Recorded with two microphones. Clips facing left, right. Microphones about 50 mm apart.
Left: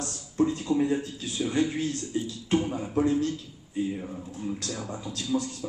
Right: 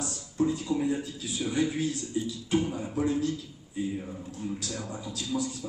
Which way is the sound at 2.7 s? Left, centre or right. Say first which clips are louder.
Left 3 dB; left.